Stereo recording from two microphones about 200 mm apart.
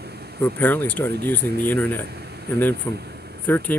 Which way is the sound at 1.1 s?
55° right (ahead or behind).